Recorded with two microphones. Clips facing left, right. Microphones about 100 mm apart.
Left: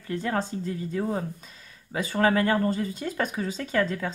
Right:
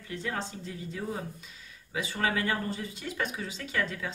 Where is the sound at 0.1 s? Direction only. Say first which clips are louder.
Left 7 dB; 45° left (ahead or behind).